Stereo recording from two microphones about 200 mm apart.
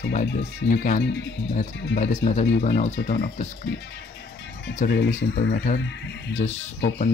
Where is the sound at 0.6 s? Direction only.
40° left (ahead or behind).